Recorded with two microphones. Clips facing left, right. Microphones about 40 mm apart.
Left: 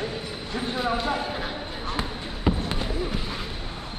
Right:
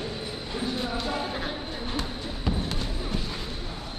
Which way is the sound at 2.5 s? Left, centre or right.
Left.